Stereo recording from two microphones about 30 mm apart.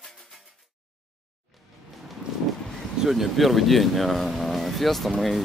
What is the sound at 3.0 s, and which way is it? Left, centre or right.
Speech, centre.